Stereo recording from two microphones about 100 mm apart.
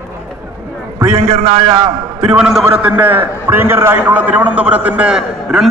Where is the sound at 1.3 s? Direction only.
90° right.